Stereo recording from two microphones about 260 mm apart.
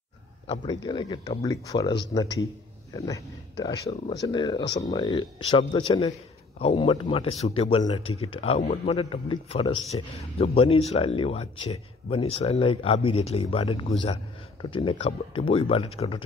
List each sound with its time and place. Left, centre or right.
0.5 s speech: centre